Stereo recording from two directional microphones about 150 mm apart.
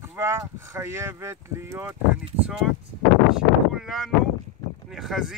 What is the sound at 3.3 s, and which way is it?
Speech, centre (ahead or behind).